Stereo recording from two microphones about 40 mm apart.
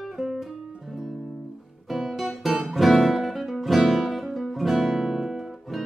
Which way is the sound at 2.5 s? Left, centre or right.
Centre.